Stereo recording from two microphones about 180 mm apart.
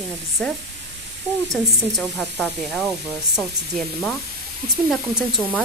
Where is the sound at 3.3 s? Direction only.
Centre (ahead or behind).